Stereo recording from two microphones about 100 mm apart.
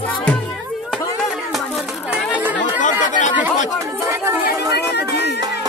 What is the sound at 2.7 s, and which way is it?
Chatter, 15° right (ahead or behind).